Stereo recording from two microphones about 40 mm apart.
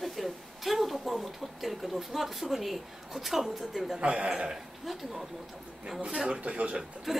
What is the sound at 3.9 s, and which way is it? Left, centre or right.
Speech, right.